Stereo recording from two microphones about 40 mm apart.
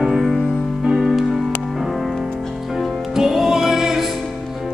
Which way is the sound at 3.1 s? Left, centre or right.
Centre.